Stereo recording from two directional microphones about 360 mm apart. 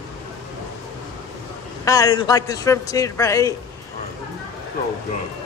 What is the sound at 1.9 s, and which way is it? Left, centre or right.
Speech, centre.